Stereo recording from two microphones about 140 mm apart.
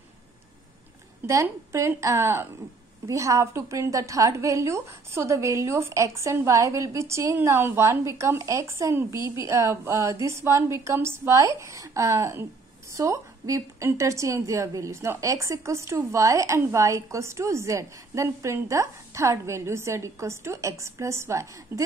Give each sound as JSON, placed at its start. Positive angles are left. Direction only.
{"t": 1.2, "sound": "a woman's voice", "side_deg": -20}